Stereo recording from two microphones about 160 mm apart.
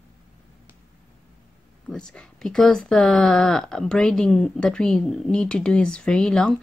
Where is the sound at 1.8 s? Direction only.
5° left (ahead or behind).